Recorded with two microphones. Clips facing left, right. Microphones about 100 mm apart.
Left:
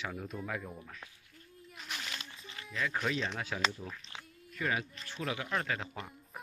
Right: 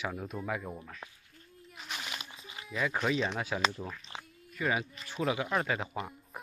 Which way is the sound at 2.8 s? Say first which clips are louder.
Right 4 dB; 10° right (ahead or behind).